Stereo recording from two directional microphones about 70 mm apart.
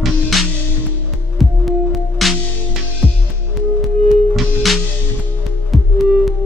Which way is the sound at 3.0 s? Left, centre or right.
Centre.